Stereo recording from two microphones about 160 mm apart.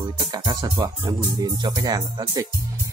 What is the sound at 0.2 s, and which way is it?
Speech, 25° right (ahead or behind).